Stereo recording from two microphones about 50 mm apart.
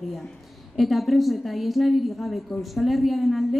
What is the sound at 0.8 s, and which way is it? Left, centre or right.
A woman's voice, centre.